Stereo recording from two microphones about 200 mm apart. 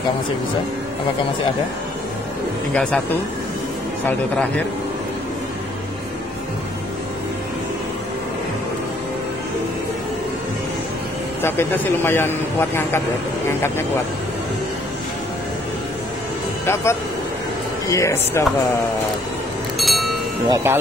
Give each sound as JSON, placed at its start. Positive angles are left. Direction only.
{"t": 2.7, "sound": "speech", "side_deg": 5}
{"t": 11.4, "sound": "a man's voice", "side_deg": 10}
{"t": 16.6, "sound": "a man's voice", "side_deg": 15}
{"t": 19.8, "sound": "speech", "side_deg": 0}
{"t": 20.4, "sound": "speech", "side_deg": -20}